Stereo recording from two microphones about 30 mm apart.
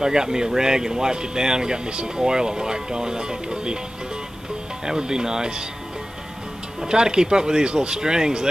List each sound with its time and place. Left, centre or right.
0.0 s speech: right
4.8 s speech: right
6.8 s speech: right